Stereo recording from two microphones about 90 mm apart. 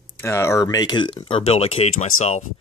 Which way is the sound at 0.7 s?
50° left (ahead or behind).